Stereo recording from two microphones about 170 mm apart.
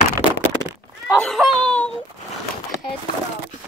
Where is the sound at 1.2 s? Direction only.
5° left (ahead or behind).